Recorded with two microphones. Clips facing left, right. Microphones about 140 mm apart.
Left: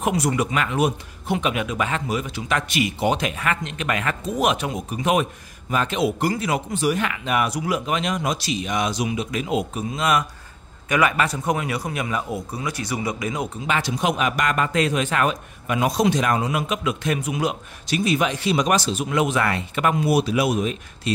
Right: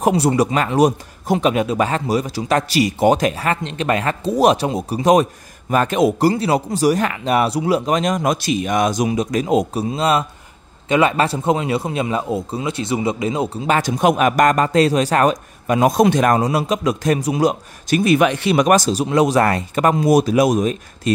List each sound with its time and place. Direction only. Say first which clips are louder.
0.0 s a man's voice: right 6 dB; 30° right (ahead or behind)
13.7 s speech: right 7 dB; 45° right (ahead or behind)